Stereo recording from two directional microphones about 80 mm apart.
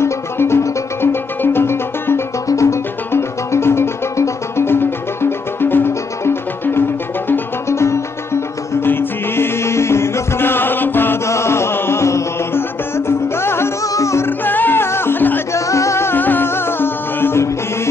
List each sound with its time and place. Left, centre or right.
0.0 s music: left
15.5 s music: left